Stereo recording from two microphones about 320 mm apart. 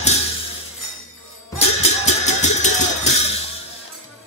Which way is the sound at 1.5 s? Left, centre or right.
Left.